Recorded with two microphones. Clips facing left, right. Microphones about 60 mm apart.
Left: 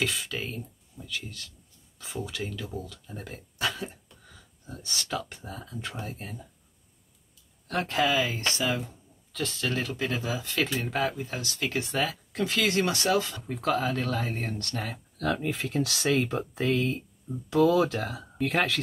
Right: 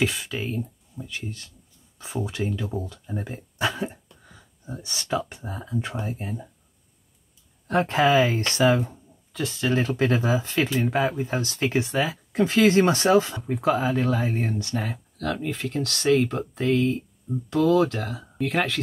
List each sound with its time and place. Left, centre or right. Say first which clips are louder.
0.0 s speech: right 4 dB; centre
1.0 s speech: right 2 dB; right
7.6 s speech: right 6 dB; right
9.3 s speech: right 5 dB; centre
9.8 s speech: right 8 dB; right
10.9 s speech: right 5 dB; centre
11.1 s speech: right 7 dB; right
11.9 s speech: right 4 dB; centre
12.3 s speech: right 8 dB; right; by 18.8 s centre